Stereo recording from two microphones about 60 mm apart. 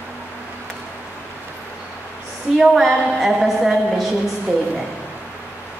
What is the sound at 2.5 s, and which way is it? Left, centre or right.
A woman's voice, centre.